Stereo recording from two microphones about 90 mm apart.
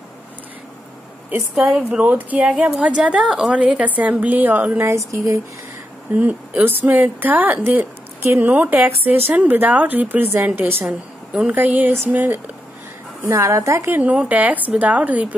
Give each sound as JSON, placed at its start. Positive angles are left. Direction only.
{"t": 1.5, "sound": "a woman's voice", "side_deg": -15}
{"t": 4.8, "sound": "a woman's voice", "side_deg": -35}
{"t": 6.1, "sound": "a woman's voice", "side_deg": -15}
{"t": 13.3, "sound": "a woman's voice", "side_deg": -35}
{"t": 13.9, "sound": "a woman's voice", "side_deg": -15}